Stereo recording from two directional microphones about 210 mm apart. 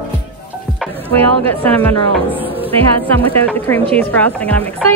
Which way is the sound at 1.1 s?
10° left (ahead or behind).